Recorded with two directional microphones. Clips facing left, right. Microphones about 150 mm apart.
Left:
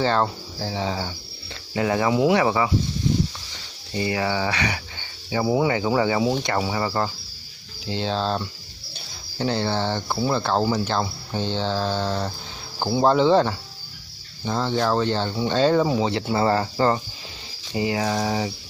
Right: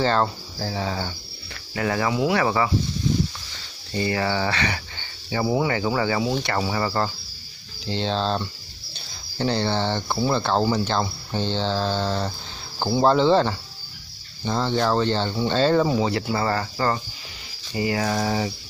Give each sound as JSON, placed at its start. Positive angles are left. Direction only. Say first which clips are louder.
{"t": 0.0, "sound": "speech", "louder": "even", "side_deg": 10}
{"t": 3.9, "sound": "speech", "louder": "even", "side_deg": 15}
{"t": 16.0, "sound": "speech", "louder": "left 1 dB", "side_deg": 20}